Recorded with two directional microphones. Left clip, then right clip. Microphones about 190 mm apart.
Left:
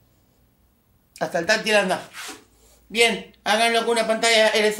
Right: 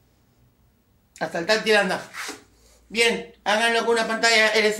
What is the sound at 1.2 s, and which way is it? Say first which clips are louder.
Speech: left 1 dB; 30° left (ahead or behind).